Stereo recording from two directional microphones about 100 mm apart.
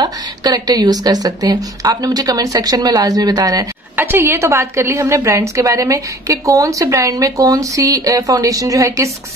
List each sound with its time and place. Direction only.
0.0 s a woman's voice: 40° right (ahead or behind)
3.9 s a woman's voice: 20° right (ahead or behind)